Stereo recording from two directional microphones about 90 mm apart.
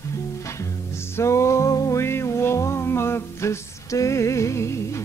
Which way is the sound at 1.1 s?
30° left (ahead or behind).